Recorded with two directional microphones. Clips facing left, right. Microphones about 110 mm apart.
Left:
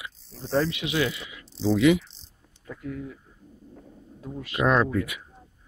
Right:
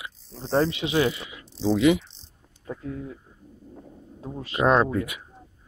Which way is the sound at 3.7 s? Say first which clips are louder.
Right 4 dB; 25° right (ahead or behind).